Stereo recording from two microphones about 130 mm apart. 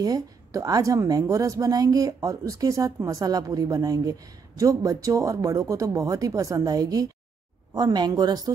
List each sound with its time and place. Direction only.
0.0 s a woman's voice: 25° right (ahead or behind)